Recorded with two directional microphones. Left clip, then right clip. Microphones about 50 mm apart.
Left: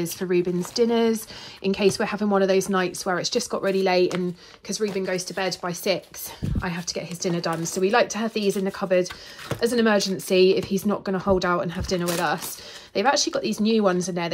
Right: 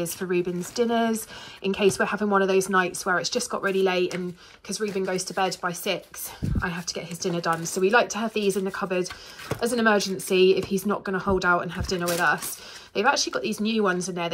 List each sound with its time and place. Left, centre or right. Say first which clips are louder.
0.0 s speech: left 3 dB; left
0.8 s speech: left 3 dB; left
2.3 s speech: even; left
4.6 s speech: left 3 dB; left
4.9 s speech: left 1 dB; left
5.4 s speech: right 4 dB; left
5.7 s speech: left 3 dB; left
6.7 s speech: left 2 dB; left
7.8 s speech: even; left
8.1 s speech: even; left